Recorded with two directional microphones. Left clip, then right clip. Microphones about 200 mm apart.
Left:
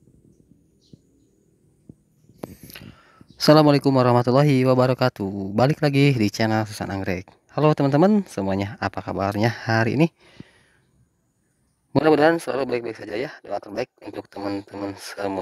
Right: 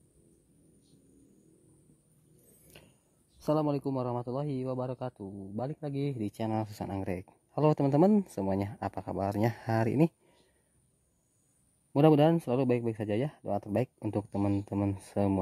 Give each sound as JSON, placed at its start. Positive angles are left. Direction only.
{"t": 3.4, "sound": "speech", "side_deg": 20}
{"t": 6.3, "sound": "speech", "side_deg": 15}
{"t": 11.9, "sound": "speech", "side_deg": 10}